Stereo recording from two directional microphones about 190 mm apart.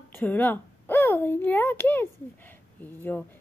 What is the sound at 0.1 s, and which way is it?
A child's voice, 10° left (ahead or behind).